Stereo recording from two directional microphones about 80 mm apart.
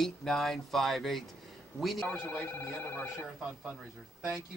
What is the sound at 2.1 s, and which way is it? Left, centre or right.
Speech, left.